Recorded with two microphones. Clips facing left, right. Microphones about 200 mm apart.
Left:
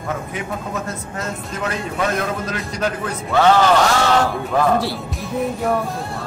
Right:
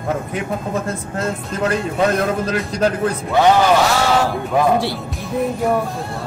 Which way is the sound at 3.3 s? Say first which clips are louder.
Even; 15° right (ahead or behind).